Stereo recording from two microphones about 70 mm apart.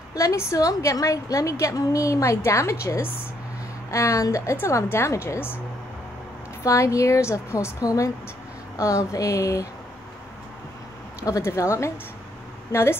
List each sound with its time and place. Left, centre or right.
0.1 s a woman's voice: left
6.6 s a woman's voice: left
11.4 s a woman's voice: left